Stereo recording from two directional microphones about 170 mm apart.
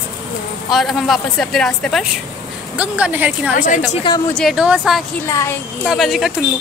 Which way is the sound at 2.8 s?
10° right (ahead or behind).